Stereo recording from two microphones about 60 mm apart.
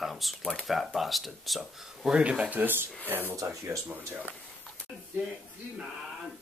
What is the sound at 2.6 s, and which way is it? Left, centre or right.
Speech, right.